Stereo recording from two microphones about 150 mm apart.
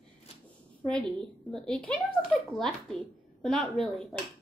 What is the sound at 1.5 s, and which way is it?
Speech, 5° left (ahead or behind).